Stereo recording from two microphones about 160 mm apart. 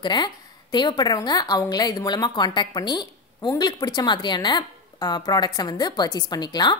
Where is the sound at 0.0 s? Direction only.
25° left (ahead or behind).